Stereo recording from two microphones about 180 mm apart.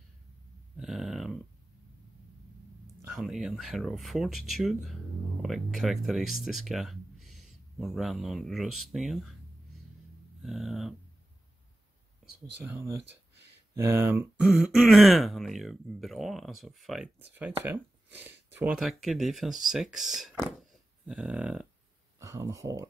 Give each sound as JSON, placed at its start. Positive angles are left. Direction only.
{"t": 0.7, "sound": "speech", "side_deg": 0}
{"t": 3.1, "sound": "speech", "side_deg": 0}
{"t": 10.4, "sound": "speech", "side_deg": 0}
{"t": 13.8, "sound": "speech", "side_deg": -15}
{"t": 14.4, "sound": "speech", "side_deg": 0}
{"t": 22.2, "sound": "speech", "side_deg": -15}